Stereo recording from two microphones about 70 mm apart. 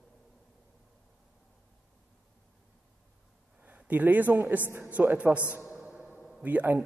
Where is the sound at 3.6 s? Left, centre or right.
Right.